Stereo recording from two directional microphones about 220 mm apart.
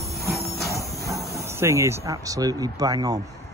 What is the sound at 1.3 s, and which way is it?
Speech, 10° right (ahead or behind).